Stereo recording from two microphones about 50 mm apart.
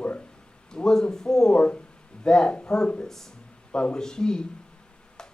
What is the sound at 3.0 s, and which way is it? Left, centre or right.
Speech, centre.